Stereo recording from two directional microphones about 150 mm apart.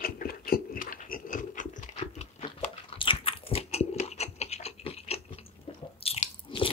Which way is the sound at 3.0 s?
35° left (ahead or behind).